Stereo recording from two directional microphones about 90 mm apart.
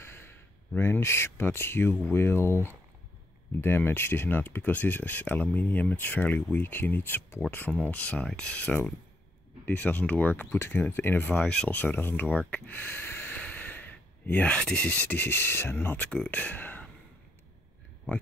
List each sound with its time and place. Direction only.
0.0 s speech: 25° left (ahead or behind)